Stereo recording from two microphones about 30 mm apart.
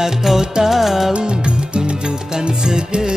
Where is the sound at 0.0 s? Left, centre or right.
Centre.